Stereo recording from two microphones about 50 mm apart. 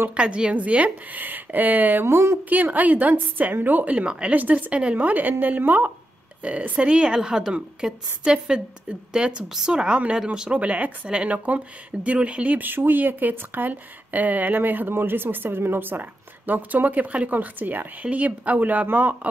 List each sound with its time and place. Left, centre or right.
0.1 s speech: right
2.0 s speech: right
2.5 s speech: right
3.9 s speech: right
6.4 s a woman's voice: right
10.6 s speech: right